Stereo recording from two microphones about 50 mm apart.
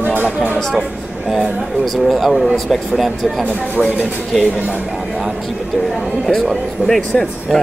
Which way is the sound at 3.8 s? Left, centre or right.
Left.